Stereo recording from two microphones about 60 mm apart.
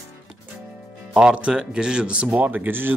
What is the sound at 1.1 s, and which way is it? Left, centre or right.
Speech, centre.